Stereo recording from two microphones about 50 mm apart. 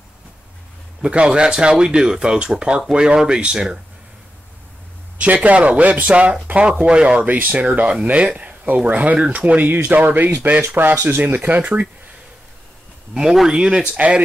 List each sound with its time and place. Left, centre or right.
1.0 s speech: right
5.2 s speech: right
7.2 s speech: right
9.8 s speech: right
13.1 s speech: centre
13.9 s speech: right